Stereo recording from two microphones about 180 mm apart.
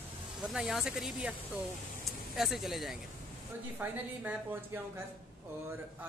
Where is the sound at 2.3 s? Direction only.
Centre (ahead or behind).